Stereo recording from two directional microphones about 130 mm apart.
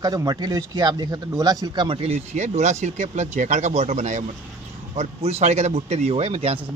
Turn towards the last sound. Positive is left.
turn(degrees=-50)  # may be behind; listen again after turning